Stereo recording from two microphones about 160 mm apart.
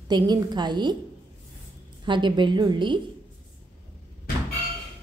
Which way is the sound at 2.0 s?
30° right (ahead or behind).